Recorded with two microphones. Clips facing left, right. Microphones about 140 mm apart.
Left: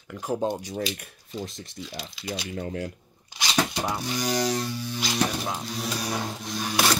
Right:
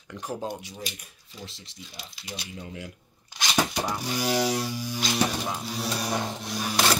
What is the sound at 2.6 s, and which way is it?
Speech, 50° left (ahead or behind).